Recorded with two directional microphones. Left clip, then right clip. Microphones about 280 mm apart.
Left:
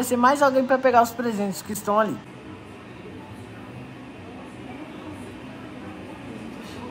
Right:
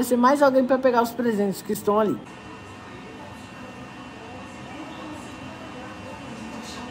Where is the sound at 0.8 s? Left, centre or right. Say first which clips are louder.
Left 3 dB; centre.